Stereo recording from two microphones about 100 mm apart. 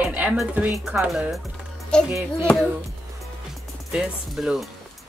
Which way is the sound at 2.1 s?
25° right (ahead or behind).